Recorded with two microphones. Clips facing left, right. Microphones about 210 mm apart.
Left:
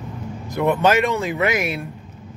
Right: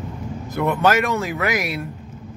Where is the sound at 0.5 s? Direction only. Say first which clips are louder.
Left 1 dB; 15° left (ahead or behind).